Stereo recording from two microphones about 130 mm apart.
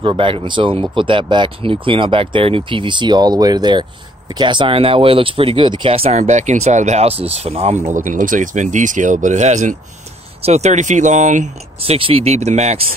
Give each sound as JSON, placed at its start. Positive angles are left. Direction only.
{"t": 0.0, "sound": "speech", "side_deg": -40}
{"t": 7.9, "sound": "speech", "side_deg": -85}
{"t": 11.8, "sound": "speech", "side_deg": -45}